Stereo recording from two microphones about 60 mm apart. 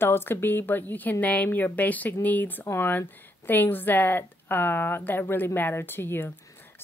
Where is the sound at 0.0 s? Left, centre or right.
Left.